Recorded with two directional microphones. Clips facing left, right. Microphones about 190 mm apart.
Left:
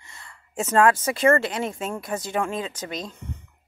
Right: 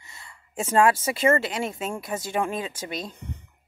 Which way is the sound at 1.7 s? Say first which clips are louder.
Left 1 dB; centre (ahead or behind).